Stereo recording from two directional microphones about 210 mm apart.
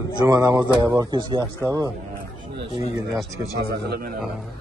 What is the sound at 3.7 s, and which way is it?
Speech, 50° right (ahead or behind).